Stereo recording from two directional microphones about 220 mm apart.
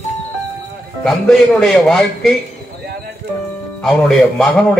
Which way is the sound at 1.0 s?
Centre (ahead or behind).